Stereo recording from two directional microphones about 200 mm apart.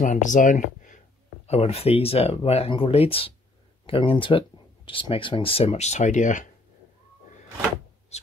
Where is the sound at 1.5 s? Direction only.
30° left (ahead or behind).